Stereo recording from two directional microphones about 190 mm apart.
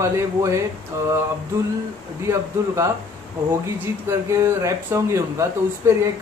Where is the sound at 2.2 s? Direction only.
15° right (ahead or behind).